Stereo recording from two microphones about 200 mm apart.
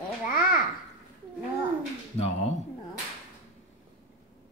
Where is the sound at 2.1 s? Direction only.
30° left (ahead or behind).